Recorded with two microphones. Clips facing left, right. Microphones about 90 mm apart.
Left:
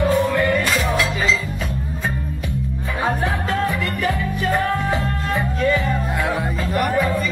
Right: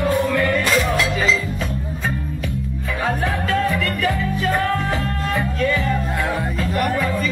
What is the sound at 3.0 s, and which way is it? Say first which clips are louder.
Music: even; 20° left (ahead or behind).